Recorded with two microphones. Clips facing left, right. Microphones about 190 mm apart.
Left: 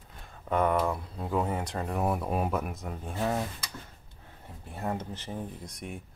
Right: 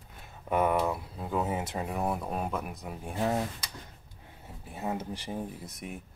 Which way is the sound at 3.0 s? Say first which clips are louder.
Right 1 dB; 15° right (ahead or behind).